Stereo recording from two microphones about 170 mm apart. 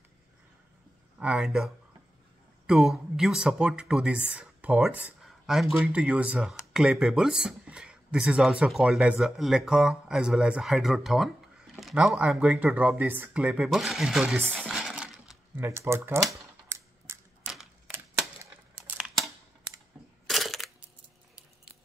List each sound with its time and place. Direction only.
1.2 s speech: 5° right (ahead or behind)
14.4 s a sound: 5° left (ahead or behind); by 16.0 s 15° right (ahead or behind)
16.6 s mechanisms: 15° right (ahead or behind)
17.5 s a sound: centre (ahead or behind)
17.9 s typewriter: 10° right (ahead or behind)
20.2 s crushing: centre (ahead or behind)